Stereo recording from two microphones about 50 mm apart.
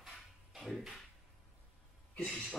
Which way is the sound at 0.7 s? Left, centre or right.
Centre.